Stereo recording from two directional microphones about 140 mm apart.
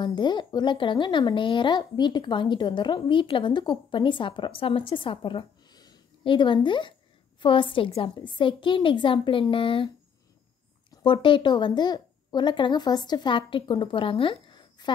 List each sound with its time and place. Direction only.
0.0 s speech: 35° left (ahead or behind)
11.0 s speech: 35° left (ahead or behind)